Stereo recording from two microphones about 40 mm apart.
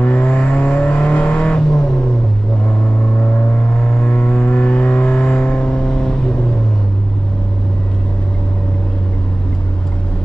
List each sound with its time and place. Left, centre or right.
0.0 s vehicle: left
1.4 s vehicle: left
3.2 s vehicle: left; by 6.3 s centre